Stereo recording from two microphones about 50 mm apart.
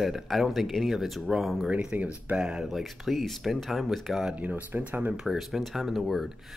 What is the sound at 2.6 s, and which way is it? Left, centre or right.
Speech, centre.